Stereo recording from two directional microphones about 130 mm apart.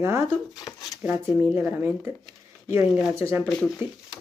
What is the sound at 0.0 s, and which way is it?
Speech, 20° right (ahead or behind).